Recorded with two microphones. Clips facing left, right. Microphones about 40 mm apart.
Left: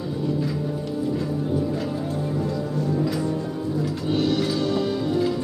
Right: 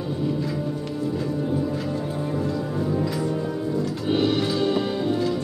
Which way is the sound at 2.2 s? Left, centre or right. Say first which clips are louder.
Even; centre.